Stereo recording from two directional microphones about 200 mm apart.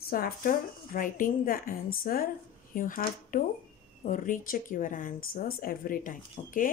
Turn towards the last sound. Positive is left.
turn(degrees=40)  # may be behind; listen again after turning